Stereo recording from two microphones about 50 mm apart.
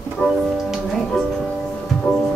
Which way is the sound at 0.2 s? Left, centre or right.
Left.